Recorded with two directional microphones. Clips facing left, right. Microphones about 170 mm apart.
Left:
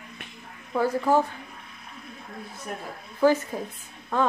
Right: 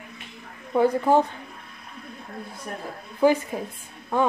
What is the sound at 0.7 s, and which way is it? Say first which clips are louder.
Speech: right 3 dB; 20° right (ahead or behind).